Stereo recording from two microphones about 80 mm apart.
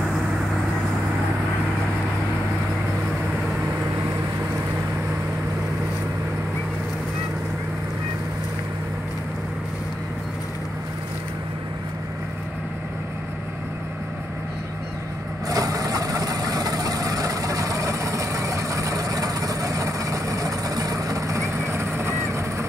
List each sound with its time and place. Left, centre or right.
15.4 s vehicle: right